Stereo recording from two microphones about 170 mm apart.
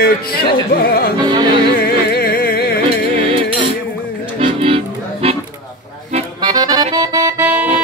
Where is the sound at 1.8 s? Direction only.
60° left (ahead or behind).